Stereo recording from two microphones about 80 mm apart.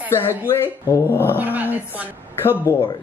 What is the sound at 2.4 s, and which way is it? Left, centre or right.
Speech, left.